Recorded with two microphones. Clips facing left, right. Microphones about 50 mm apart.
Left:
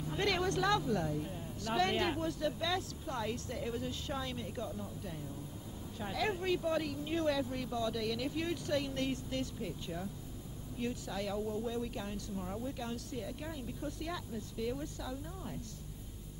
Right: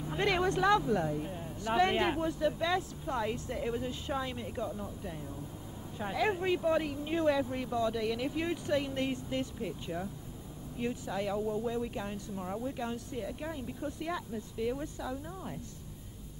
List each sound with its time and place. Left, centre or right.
0.0 s speech: centre